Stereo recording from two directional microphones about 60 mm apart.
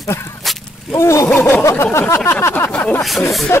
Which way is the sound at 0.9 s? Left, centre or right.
Left.